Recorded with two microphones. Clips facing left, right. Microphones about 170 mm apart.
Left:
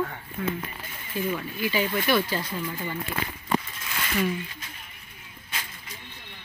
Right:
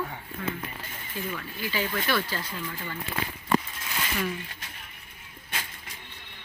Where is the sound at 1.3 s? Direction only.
15° left (ahead or behind).